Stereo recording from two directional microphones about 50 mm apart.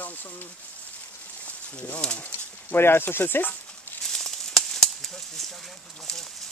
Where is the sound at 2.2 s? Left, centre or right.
Left.